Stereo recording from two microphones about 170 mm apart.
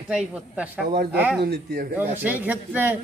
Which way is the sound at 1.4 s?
70° right (ahead or behind).